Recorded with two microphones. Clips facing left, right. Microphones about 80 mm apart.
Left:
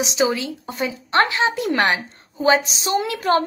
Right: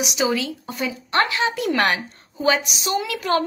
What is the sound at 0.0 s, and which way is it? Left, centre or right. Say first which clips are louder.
A woman's voice: left 2 dB; left.